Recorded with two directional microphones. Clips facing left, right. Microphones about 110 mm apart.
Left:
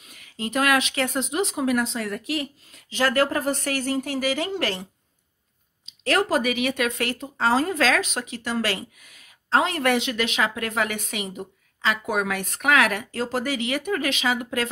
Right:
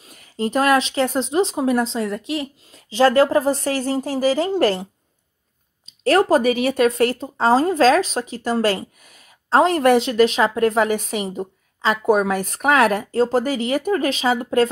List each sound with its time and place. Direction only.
0.0 s speech: 35° right (ahead or behind)
5.9 s speech: 35° right (ahead or behind)